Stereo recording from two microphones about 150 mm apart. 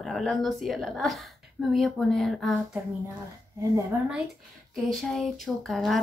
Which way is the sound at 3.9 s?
15° right (ahead or behind).